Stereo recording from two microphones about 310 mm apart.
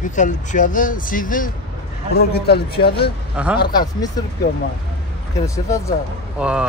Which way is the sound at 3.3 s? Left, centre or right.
Centre.